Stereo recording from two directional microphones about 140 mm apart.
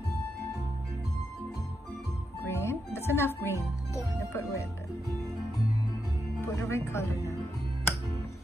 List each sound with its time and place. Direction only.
2.4 s music: 20° left (ahead or behind)
6.4 s speech: 20° left (ahead or behind)